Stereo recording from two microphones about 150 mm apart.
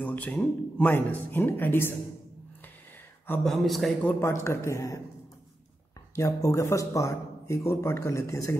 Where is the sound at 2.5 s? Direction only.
10° left (ahead or behind).